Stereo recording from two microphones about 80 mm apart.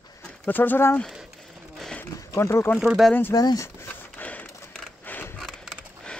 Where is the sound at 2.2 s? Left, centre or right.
Left.